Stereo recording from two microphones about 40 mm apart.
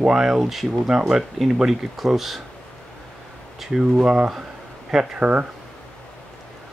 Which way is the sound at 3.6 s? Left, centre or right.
Centre.